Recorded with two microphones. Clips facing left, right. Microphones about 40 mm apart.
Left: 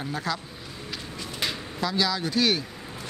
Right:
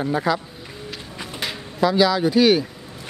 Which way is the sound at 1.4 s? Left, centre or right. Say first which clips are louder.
Right 7 dB; centre.